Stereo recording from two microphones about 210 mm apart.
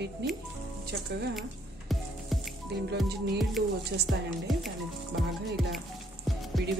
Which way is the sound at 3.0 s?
50° right (ahead or behind).